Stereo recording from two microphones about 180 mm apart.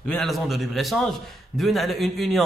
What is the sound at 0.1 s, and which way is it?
Speech, centre (ahead or behind).